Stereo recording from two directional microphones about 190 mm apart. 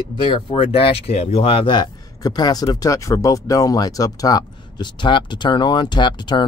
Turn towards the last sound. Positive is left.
turn(degrees=25)  # may be behind; listen again after turning